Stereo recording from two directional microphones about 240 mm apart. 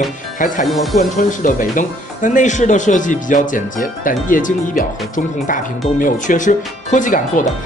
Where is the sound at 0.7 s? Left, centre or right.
Centre.